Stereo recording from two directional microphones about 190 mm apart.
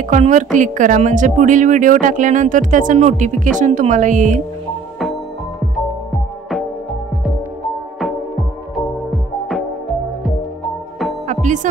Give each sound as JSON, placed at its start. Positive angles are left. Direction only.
{"t": 0.0, "sound": "a woman's voice", "side_deg": -40}
{"t": 8.7, "sound": "music", "side_deg": 0}
{"t": 11.2, "sound": "music", "side_deg": -40}